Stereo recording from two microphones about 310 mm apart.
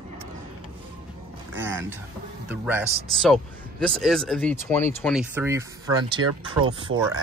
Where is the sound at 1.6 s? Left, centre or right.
Centre.